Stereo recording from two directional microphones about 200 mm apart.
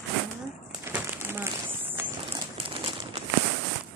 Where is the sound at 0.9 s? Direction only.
10° right (ahead or behind).